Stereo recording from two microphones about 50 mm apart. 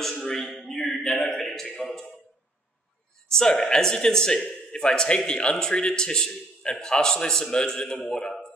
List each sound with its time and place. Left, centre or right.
0.2 s speech: centre
1.8 s speech: centre
3.3 s a man's voice: centre